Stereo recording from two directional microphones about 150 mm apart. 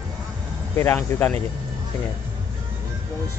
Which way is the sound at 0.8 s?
15° left (ahead or behind).